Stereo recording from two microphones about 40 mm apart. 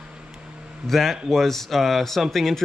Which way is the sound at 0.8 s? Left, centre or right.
Centre.